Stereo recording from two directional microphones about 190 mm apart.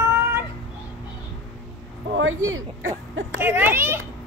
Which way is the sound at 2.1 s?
90° right.